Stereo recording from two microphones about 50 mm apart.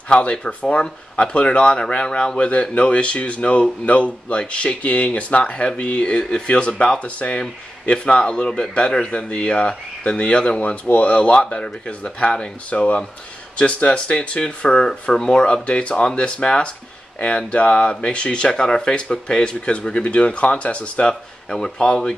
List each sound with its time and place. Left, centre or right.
0.1 s speech: left
21.1 s speech: centre